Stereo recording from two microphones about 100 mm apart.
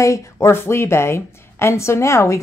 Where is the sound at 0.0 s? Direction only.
30° left (ahead or behind).